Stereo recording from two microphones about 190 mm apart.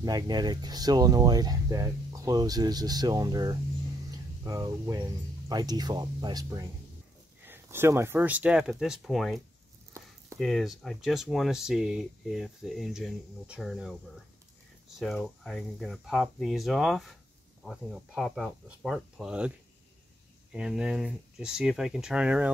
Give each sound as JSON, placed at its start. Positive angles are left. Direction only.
{"t": 0.0, "sound": "speech", "side_deg": -20}
{"t": 10.4, "sound": "speech", "side_deg": 0}
{"t": 15.0, "sound": "speech", "side_deg": 0}
{"t": 20.5, "sound": "speech", "side_deg": -5}